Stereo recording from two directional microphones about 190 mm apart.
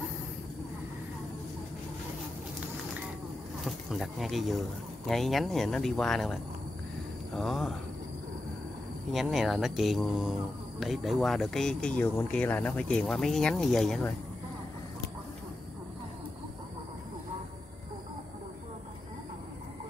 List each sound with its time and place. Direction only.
3.6 s speech: centre (ahead or behind)
9.1 s speech: centre (ahead or behind)